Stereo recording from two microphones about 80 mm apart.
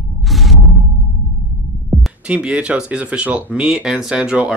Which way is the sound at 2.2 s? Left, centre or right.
Centre.